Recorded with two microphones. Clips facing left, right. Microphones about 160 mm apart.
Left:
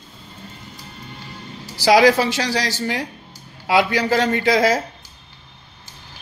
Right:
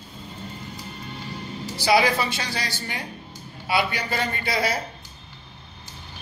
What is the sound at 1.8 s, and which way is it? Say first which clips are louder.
A woman's voice: left 7 dB; 90° left.